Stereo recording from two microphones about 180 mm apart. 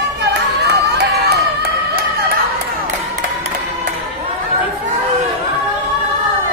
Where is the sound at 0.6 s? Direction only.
65° right (ahead or behind).